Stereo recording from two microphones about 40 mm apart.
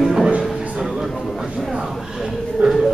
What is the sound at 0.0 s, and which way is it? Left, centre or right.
Music, centre.